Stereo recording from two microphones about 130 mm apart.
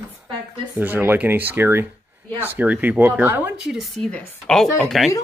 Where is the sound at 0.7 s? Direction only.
15° right (ahead or behind).